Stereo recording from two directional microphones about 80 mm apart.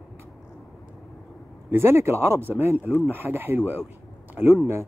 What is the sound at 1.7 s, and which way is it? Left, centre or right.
A man's voice, right.